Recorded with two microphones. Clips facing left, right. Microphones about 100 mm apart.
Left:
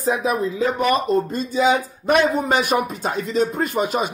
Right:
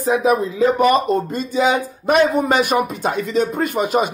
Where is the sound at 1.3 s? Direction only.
50° right (ahead or behind).